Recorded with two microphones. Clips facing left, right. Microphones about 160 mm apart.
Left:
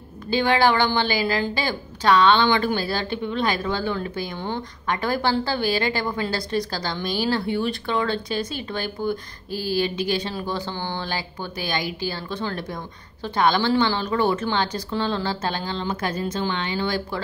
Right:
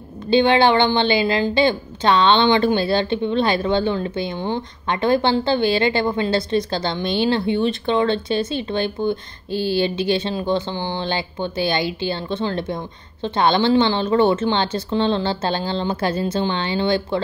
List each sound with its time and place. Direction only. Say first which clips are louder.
0.3 s a woman's voice: right 5 dB; 25° right (ahead or behind)